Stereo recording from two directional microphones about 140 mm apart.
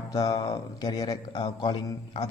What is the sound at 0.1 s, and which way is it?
A man's voice, 25° left (ahead or behind).